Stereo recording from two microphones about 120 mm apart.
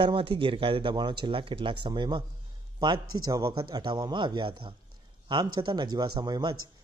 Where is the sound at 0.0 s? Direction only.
45° right (ahead or behind).